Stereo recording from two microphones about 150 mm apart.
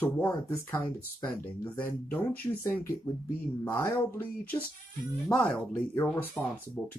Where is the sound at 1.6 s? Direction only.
15° left (ahead or behind).